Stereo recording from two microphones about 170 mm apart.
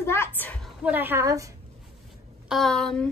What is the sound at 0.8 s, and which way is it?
Speech, 10° right (ahead or behind).